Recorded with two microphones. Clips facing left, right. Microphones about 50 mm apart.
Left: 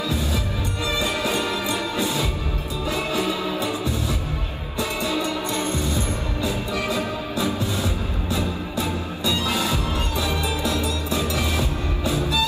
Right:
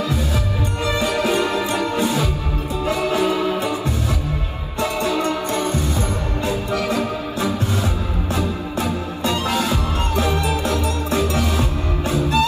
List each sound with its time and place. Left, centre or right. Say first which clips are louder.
0.8 s music: right 4 dB; right
4.7 s music: right 4 dB; right